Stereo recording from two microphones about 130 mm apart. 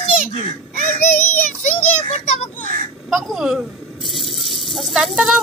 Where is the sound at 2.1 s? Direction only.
60° left (ahead or behind).